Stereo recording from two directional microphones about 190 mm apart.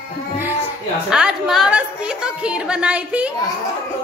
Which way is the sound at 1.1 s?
5° right (ahead or behind).